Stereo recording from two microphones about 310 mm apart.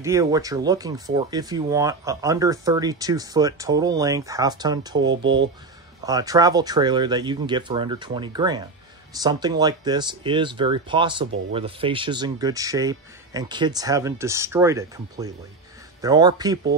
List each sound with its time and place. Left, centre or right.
0.0 s speech: centre
6.0 s speech: centre